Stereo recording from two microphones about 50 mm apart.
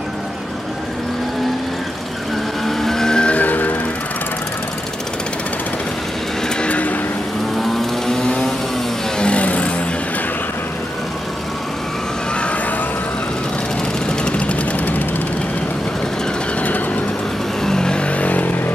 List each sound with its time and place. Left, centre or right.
2.6 s music: centre
3.3 s music: left
6.6 s vehicle: left
8.1 s vehicle: centre
9.2 s a sound: left
14.4 s vehicle: left
17.6 s a sound: centre; by 18.5 s left